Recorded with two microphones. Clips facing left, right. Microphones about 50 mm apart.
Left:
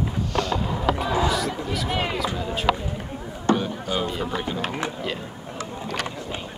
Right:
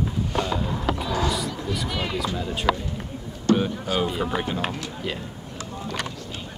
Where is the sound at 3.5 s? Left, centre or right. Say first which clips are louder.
Right 2 dB; centre.